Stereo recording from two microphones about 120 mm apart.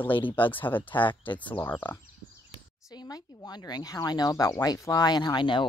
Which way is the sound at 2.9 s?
30° left (ahead or behind).